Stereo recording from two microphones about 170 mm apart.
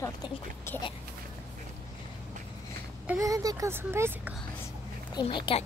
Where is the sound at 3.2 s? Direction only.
20° right (ahead or behind).